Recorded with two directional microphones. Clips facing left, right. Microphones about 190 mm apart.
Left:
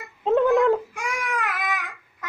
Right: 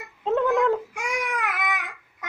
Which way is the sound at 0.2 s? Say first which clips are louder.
Left 3 dB; 15° left (ahead or behind).